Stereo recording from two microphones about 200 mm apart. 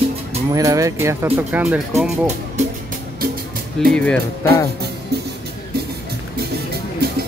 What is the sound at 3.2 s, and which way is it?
Music, 45° right (ahead or behind).